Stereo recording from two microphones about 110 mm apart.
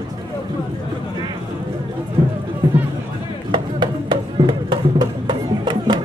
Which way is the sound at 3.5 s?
45° right (ahead or behind).